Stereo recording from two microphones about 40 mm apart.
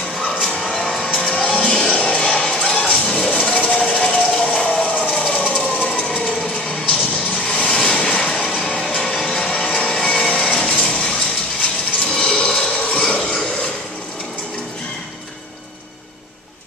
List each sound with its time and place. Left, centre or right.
0.5 s a sound: centre
1.0 s music: left
1.3 s music: left
2.7 s a sound: left
5.8 s train: left
6.9 s vehicle: left
8.3 s train: left
9.0 s music: centre
10.0 s vehicle: left
11.6 s a sound: left